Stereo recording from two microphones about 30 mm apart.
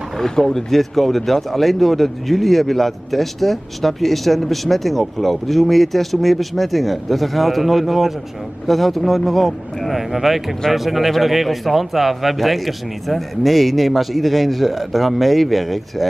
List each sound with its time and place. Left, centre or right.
0.2 s speech: centre